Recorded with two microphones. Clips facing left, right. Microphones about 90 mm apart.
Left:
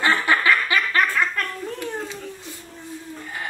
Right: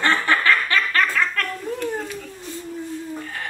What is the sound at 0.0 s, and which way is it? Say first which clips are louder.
Snicker: even; 10° left (ahead or behind).